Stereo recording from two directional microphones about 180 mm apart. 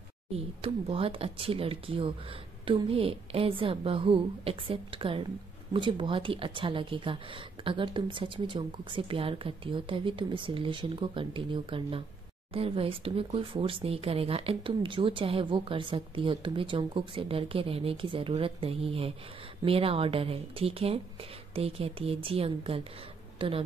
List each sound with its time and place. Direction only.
0.3 s a woman's voice: 35° right (ahead or behind)